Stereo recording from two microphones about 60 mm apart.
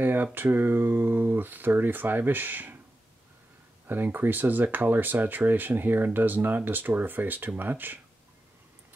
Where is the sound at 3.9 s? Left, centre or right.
Right.